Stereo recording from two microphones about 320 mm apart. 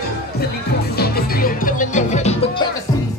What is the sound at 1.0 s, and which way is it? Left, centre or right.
Music, left.